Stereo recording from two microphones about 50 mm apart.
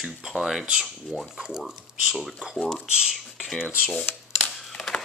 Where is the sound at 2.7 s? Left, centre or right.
Centre.